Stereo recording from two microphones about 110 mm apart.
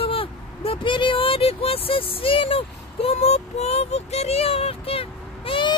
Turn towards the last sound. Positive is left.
turn(degrees=50)  # may be behind; listen again after turning